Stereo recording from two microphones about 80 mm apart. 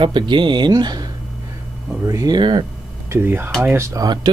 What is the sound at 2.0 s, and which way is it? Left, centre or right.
Speech, right.